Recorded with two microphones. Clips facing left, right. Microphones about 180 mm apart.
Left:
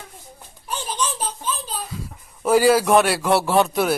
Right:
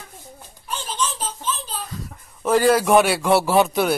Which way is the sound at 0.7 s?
15° left (ahead or behind).